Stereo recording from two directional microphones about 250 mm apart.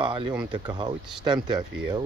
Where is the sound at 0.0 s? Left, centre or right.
Centre.